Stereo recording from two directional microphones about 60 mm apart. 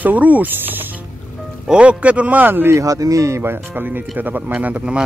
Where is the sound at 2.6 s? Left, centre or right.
Right.